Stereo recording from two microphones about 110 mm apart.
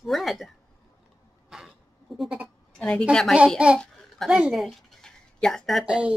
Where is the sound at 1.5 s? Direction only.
Centre (ahead or behind).